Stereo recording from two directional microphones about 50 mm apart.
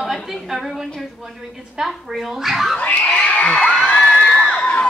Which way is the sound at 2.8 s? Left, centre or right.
Left.